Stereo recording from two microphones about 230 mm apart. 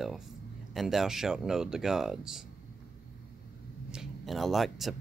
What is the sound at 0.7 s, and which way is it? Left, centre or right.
Speech, centre.